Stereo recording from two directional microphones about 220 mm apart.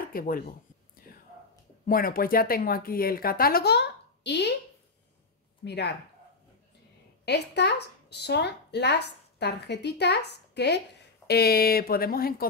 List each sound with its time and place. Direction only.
0.1 s speech: 40° left (ahead or behind)
1.1 s whispering: 40° left (ahead or behind)
1.9 s speech: 40° left (ahead or behind)
5.6 s speech: 50° left (ahead or behind)
7.2 s speech: 50° left (ahead or behind)